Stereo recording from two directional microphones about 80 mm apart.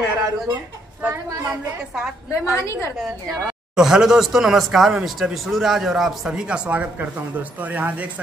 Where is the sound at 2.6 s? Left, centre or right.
Left.